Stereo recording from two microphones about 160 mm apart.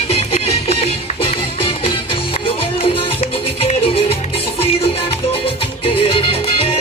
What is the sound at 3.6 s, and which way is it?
Music, 35° left (ahead or behind).